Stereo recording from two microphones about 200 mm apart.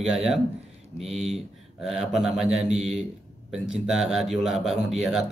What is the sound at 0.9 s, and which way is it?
Speech, 30° right (ahead or behind).